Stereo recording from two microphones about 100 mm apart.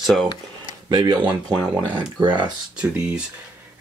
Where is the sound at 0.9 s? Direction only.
45° right (ahead or behind).